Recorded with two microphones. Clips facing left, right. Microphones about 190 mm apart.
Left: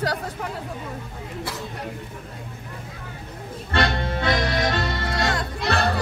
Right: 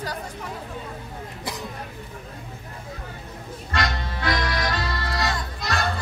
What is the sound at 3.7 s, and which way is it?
Music, 30° left (ahead or behind).